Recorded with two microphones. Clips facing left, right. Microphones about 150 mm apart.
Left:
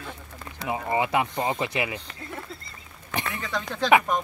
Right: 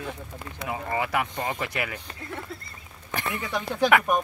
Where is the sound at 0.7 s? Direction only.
20° left (ahead or behind).